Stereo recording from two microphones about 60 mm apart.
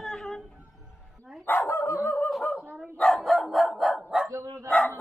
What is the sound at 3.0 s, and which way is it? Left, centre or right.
Dog, centre.